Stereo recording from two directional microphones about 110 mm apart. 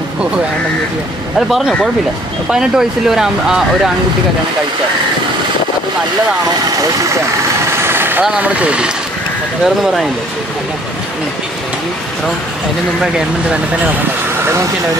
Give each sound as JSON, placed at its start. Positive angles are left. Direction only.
{"t": 1.5, "sound": "speech", "side_deg": 5}
{"t": 7.8, "sound": "engine", "side_deg": -20}
{"t": 8.3, "sound": "speech", "side_deg": -10}
{"t": 13.0, "sound": "speech", "side_deg": -5}
{"t": 14.4, "sound": "speech", "side_deg": -25}